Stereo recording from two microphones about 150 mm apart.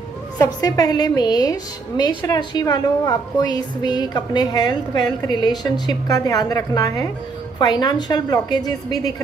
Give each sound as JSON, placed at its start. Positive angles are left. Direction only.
{"t": 0.4, "sound": "a woman's voice", "side_deg": 25}